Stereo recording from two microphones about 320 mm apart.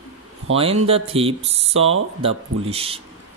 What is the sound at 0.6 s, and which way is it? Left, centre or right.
Speech, centre.